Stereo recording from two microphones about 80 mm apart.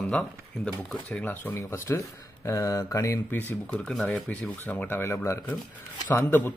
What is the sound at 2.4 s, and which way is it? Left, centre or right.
Mantra, left.